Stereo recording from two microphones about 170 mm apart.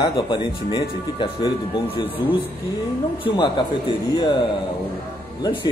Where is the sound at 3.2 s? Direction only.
30° left (ahead or behind).